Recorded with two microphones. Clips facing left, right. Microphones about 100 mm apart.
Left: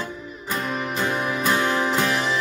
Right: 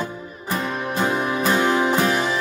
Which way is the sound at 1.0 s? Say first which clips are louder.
Right 4 dB; 20° right (ahead or behind).